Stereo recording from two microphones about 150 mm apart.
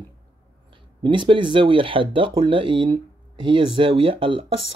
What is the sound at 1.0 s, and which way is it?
Speech, 35° right (ahead or behind).